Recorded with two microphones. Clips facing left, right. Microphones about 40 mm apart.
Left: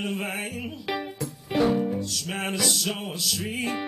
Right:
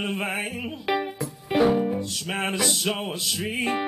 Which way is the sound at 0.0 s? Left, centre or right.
Centre.